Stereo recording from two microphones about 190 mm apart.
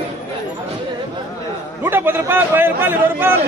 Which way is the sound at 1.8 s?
10° right (ahead or behind).